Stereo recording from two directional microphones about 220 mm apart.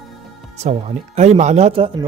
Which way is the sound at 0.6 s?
30° right (ahead or behind).